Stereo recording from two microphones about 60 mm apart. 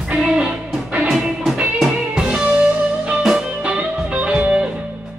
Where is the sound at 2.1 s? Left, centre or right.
Centre.